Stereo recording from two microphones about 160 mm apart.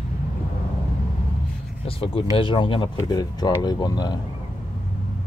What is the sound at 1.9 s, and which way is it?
Speech, 35° left (ahead or behind).